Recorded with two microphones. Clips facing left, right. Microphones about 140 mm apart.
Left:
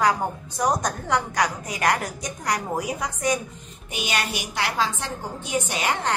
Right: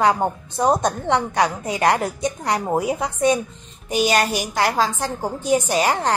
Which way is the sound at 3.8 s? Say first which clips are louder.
Right 9 dB; 40° right (ahead or behind).